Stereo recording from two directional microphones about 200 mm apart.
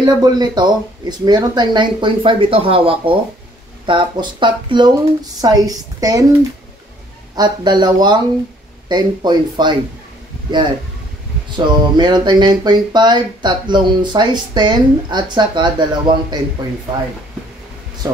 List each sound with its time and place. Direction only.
0.0 s a woman's voice: 20° right (ahead or behind)
7.3 s speech: 20° right (ahead or behind)
11.5 s speech: 20° right (ahead or behind)
18.0 s a woman's voice: 20° right (ahead or behind)